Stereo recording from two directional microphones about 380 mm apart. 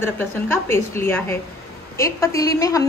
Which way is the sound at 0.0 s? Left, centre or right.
Centre.